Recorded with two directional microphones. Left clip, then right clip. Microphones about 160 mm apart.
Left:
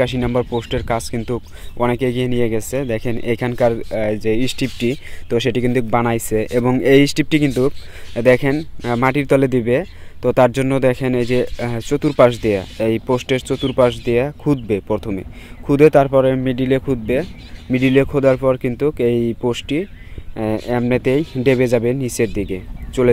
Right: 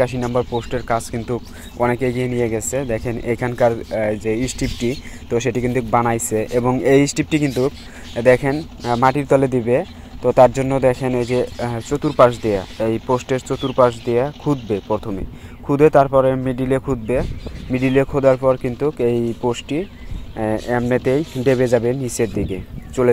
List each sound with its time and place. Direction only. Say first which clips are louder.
0.0 s speech: left 1 dB; 30° left (ahead or behind)